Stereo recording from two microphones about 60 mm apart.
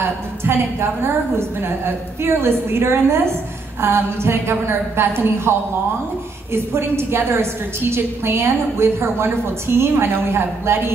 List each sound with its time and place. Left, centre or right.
0.5 s a woman's voice: right